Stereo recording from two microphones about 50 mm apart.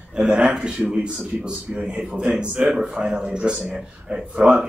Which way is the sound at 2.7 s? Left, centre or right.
Centre.